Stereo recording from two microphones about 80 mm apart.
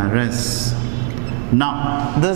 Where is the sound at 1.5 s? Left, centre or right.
Centre.